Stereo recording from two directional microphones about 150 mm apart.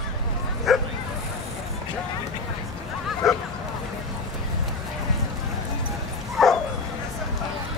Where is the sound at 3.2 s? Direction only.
Centre (ahead or behind).